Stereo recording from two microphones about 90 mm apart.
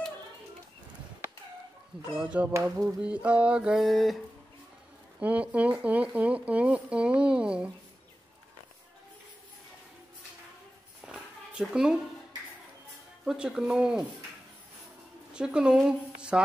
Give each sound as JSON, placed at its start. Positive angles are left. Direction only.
{"t": 2.1, "sound": "speech", "side_deg": -15}
{"t": 2.5, "sound": "a sound", "side_deg": -35}
{"t": 3.0, "sound": "speech", "side_deg": -15}
{"t": 5.2, "sound": "speech", "side_deg": -15}
{"t": 11.1, "sound": "a sound", "side_deg": -10}
{"t": 13.2, "sound": "speech", "side_deg": -10}
{"t": 15.3, "sound": "a woman's voice", "side_deg": -10}